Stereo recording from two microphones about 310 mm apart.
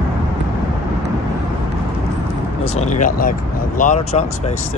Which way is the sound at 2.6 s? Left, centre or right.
Left.